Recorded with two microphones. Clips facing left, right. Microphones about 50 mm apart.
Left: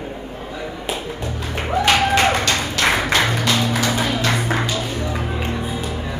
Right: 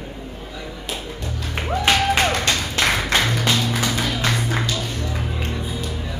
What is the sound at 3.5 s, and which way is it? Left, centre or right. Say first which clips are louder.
Music: left 3 dB; centre.